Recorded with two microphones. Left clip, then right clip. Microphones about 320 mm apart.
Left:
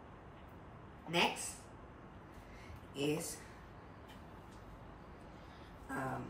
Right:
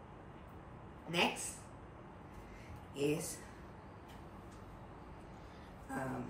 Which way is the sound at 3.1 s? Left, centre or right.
Centre.